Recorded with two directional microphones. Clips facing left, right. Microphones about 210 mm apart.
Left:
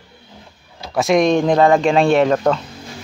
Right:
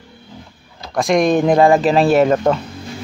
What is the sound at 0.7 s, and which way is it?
Speech, centre (ahead or behind).